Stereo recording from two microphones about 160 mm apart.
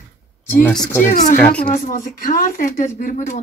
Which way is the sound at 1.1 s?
55° left (ahead or behind).